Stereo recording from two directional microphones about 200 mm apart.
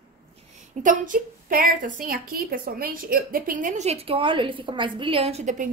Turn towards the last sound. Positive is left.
turn(degrees=-40)  # may be behind; listen again after turning